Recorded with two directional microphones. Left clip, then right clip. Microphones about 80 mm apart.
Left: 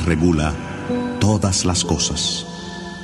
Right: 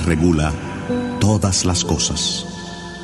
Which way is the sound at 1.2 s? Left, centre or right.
Left.